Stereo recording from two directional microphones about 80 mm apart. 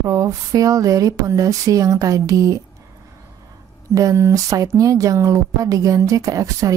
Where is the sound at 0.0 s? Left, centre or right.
Right.